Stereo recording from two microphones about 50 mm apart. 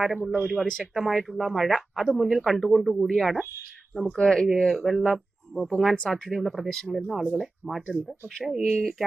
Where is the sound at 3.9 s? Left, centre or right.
Centre.